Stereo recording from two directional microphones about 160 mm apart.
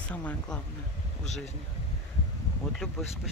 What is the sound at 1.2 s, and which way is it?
Speech, 45° left (ahead or behind).